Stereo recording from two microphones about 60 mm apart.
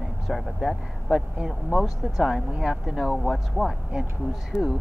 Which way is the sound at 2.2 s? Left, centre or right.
Centre.